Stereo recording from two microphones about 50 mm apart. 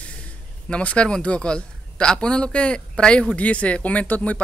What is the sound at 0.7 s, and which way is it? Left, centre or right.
A man's voice, left.